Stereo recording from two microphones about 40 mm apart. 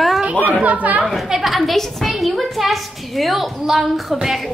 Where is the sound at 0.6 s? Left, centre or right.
Right.